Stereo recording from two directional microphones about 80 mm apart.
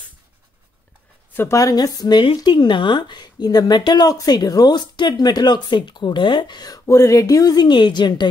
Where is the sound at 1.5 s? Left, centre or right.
Left.